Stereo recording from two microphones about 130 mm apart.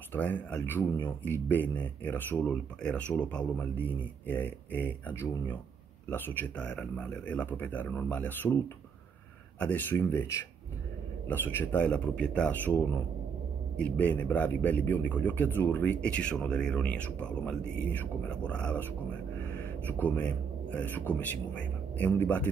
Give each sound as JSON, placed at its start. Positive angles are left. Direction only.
{"t": 0.1, "sound": "speech", "side_deg": 15}
{"t": 9.6, "sound": "speech", "side_deg": 15}
{"t": 19.9, "sound": "speech", "side_deg": 10}